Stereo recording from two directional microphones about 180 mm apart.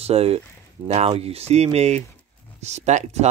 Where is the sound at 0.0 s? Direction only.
35° right (ahead or behind).